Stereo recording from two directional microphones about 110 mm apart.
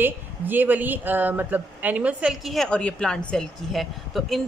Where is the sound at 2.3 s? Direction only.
Centre (ahead or behind).